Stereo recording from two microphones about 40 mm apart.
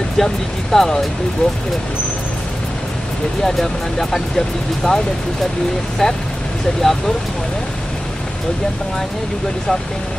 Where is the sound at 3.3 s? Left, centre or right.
Centre.